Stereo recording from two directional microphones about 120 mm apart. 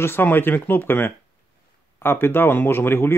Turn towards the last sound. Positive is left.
turn(degrees=20)  # may be behind; listen again after turning